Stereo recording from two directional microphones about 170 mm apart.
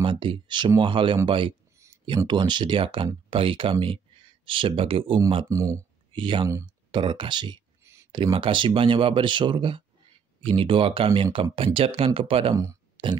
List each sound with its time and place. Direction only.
0.0 s speech: 30° right (ahead or behind)
5.5 s speech: 20° right (ahead or behind)
7.8 s a sound: 15° right (ahead or behind)
8.1 s speech: 30° right (ahead or behind)